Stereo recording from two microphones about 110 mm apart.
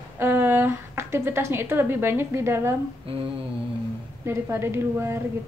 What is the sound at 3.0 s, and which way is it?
Humming, 60° right (ahead or behind).